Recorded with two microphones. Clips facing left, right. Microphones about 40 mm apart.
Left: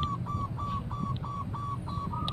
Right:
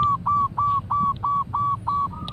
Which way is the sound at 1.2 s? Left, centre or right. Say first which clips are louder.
Right 15 dB; right.